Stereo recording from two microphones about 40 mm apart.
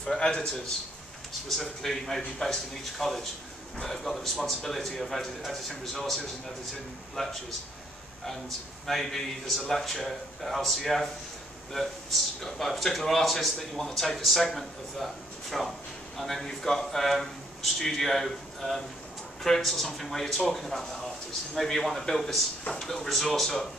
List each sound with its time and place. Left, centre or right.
0.2 s a man's voice: left
1.5 s a man's voice: centre
7.2 s a man's voice: centre
8.8 s a man's voice: centre
16.2 s a man's voice: centre